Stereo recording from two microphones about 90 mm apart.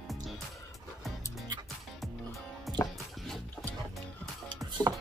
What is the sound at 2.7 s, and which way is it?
Music, centre (ahead or behind).